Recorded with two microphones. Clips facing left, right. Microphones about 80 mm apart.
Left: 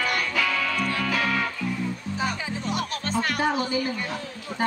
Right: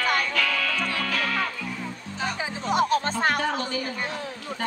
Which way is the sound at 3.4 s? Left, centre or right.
Centre.